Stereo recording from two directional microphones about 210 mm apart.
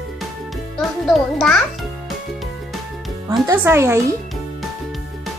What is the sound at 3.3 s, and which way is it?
Speech, 10° right (ahead or behind).